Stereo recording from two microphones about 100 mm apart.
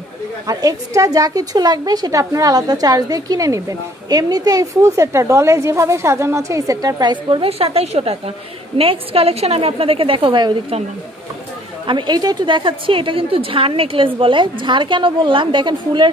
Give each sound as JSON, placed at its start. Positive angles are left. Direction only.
{"t": 0.5, "sound": "a woman's voice", "side_deg": -35}
{"t": 7.4, "sound": "a woman's voice", "side_deg": -80}
{"t": 8.7, "sound": "a woman's voice", "side_deg": -75}
{"t": 11.8, "sound": "a woman's voice", "side_deg": -50}